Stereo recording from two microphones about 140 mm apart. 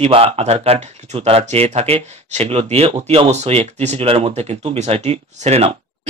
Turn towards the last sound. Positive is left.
turn(degrees=-50)  # may be behind; listen again after turning